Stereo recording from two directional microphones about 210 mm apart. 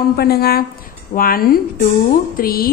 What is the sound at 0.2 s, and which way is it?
A woman's voice, 50° left (ahead or behind).